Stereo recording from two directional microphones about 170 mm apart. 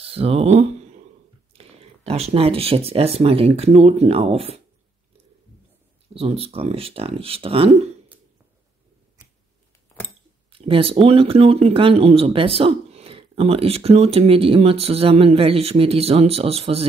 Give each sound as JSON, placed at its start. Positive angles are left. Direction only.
{"t": 0.0, "sound": "a sound", "side_deg": -35}
{"t": 1.5, "sound": "speech", "side_deg": -35}
{"t": 6.1, "sound": "speech", "side_deg": -35}
{"t": 10.5, "sound": "speech", "side_deg": -35}